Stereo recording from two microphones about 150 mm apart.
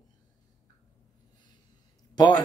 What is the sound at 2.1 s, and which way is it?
Speech, 25° left (ahead or behind).